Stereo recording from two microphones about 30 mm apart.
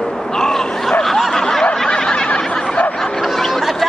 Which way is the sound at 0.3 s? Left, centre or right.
Centre.